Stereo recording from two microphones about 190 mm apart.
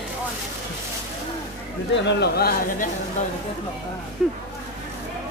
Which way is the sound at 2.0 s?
60° left (ahead or behind).